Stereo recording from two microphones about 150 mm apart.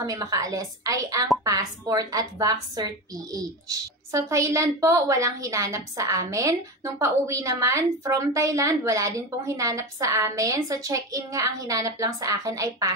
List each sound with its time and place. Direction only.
0.0 s a woman's voice: 25° right (ahead or behind)